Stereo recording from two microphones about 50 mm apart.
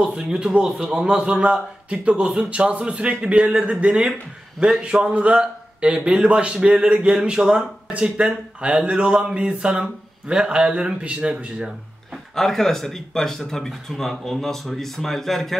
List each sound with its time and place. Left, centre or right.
0.0 s a man's voice: centre
12.4 s speech: centre